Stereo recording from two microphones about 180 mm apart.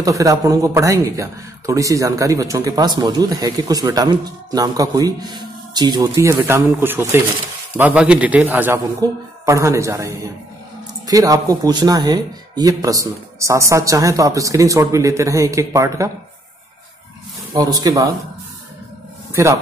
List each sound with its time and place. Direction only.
0.0 s speech: 20° right (ahead or behind)
17.6 s speech: 20° right (ahead or behind)
19.3 s speech: 15° right (ahead or behind)